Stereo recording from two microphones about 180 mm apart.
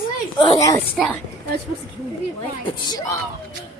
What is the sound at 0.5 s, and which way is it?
Speech, 20° left (ahead or behind).